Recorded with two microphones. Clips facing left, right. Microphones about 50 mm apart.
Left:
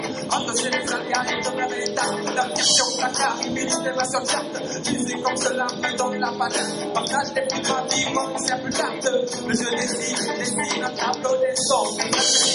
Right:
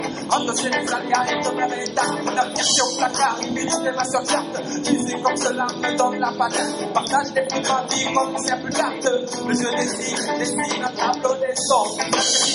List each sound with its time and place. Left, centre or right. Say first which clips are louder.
0.3 s music: right 3 dB; right
7.0 s music: right 4 dB; right
11.0 s music: right 1 dB; right